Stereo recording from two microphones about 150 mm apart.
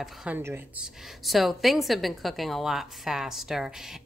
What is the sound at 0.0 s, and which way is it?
A woman's voice, 5° right (ahead or behind).